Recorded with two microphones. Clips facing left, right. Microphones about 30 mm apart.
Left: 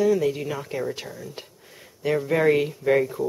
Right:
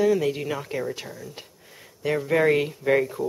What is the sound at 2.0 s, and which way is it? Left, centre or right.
Speech, centre.